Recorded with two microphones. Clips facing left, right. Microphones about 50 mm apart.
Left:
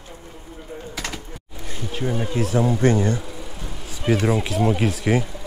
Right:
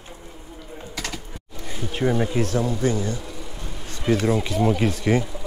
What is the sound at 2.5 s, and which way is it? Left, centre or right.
Speech, left.